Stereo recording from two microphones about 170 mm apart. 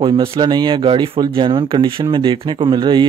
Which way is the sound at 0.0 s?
30° right (ahead or behind).